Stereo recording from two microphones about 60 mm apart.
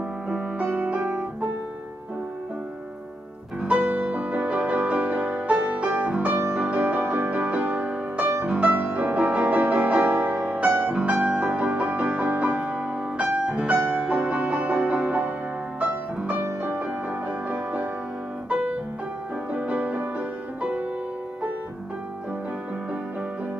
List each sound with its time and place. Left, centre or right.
0.7 s music: right
3.6 s music: right
13.4 s music: centre
13.7 s music: right
18.5 s piano: right
19.5 s music: right